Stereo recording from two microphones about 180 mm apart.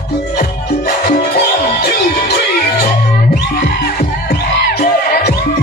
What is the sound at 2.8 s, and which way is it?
Music, 45° left (ahead or behind).